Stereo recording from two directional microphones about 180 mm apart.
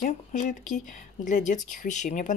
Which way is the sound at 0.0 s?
45° left (ahead or behind).